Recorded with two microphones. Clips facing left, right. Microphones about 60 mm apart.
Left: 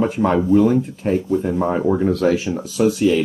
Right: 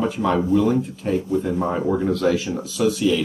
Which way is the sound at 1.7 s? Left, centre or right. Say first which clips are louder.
Left 4 dB; left.